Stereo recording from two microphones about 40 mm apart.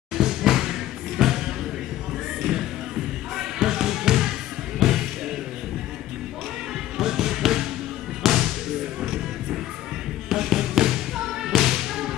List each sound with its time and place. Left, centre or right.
0.1 s music: centre
3.3 s basketball bounce: centre
4.7 s music: centre
7.0 s music: centre
10.3 s music: centre
11.5 s whip: centre